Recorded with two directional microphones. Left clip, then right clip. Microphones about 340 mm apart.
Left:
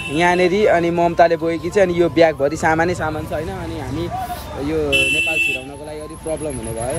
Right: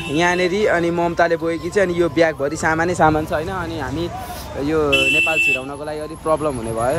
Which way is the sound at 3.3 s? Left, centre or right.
Centre.